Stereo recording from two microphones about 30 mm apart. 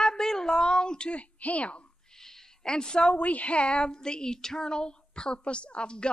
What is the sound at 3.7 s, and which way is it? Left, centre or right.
A woman's voice, left.